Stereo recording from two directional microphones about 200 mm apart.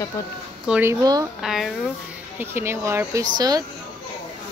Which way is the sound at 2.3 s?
10° right (ahead or behind).